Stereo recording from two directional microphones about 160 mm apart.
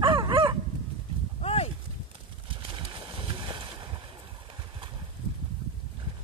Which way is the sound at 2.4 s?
35° right (ahead or behind).